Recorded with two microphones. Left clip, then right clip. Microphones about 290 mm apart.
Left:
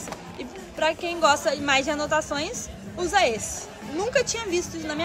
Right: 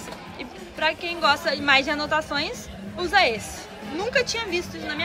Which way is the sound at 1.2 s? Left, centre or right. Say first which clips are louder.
Left 1 dB; centre.